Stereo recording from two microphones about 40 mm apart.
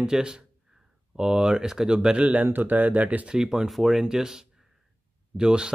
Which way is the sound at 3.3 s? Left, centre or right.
Centre.